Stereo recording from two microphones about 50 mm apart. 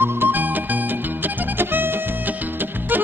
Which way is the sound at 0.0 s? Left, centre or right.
Right.